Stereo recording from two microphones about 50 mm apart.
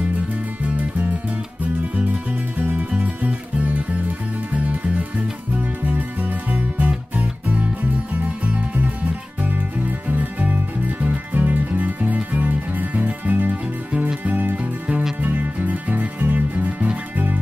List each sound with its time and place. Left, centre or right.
2.6 s music: right
14.6 s music: right